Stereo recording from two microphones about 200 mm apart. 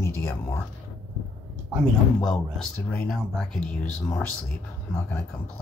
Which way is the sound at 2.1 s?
5° left (ahead or behind).